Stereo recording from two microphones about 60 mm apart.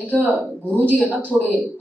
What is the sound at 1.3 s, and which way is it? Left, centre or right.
Speech, centre.